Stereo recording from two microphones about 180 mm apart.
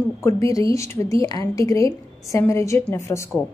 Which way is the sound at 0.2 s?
15° left (ahead or behind).